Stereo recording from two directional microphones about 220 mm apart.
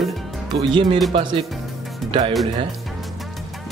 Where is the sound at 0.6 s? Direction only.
20° right (ahead or behind).